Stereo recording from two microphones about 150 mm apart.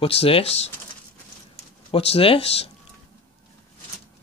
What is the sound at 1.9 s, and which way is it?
Speech, 40° left (ahead or behind).